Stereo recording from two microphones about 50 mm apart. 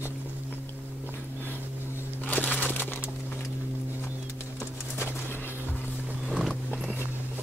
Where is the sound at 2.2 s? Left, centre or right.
Left.